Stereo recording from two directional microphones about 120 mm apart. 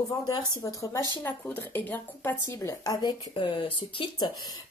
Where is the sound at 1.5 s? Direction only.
15° left (ahead or behind).